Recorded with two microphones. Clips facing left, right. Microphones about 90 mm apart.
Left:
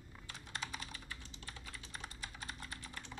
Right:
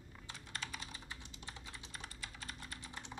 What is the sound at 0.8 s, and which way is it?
Computer keyboard, 20° right (ahead or behind).